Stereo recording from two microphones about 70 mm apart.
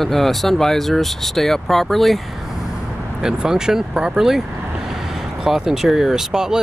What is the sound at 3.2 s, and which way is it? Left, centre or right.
Speech, centre.